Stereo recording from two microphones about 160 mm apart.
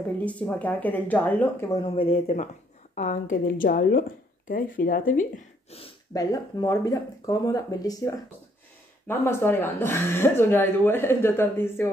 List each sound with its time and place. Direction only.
0.2 s speech: 10° left (ahead or behind)
1.8 s a woman's voice: 35° left (ahead or behind); by 4.0 s 70° left (ahead or behind)
4.5 s speech: 60° left (ahead or behind)
6.1 s speech: 25° left (ahead or behind)